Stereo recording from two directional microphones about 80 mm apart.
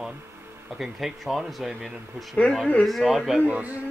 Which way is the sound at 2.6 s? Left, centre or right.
Centre.